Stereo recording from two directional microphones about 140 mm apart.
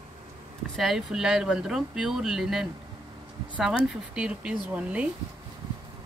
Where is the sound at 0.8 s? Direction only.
Centre (ahead or behind).